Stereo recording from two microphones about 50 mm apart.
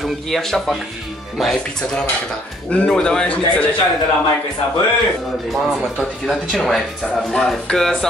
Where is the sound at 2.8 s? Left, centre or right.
Centre.